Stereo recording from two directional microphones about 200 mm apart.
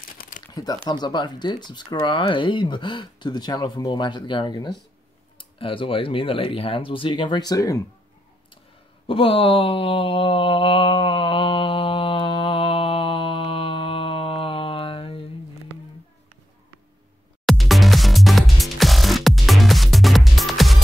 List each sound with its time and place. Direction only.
0.5 s crumpling: 20° left (ahead or behind)
0.8 s speech: 20° left (ahead or behind)
9.0 s mantra: 25° left (ahead or behind)
17.5 s music: centre (ahead or behind)